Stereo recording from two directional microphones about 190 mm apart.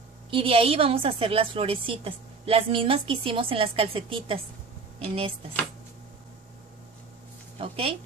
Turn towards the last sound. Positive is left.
turn(degrees=-30)  # may be behind; listen again after turning